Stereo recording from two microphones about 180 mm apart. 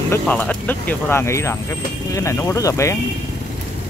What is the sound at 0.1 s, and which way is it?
Speech, 10° left (ahead or behind).